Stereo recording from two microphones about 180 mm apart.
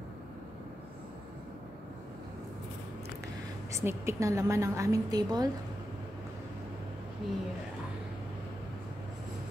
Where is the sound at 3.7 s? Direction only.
15° right (ahead or behind).